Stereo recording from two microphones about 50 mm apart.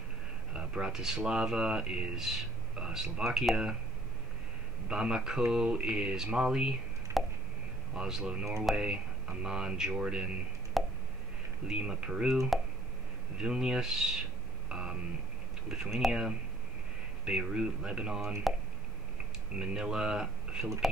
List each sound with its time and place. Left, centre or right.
0.5 s speech: centre
4.8 s speech: centre
7.1 s a sound: right
7.9 s speech: centre
10.8 s a sound: centre
11.6 s speech: centre
14.7 s a sound: centre
15.7 s speech: centre
19.6 s speech: centre